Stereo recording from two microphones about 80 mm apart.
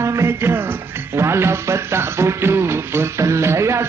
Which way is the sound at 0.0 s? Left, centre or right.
Right.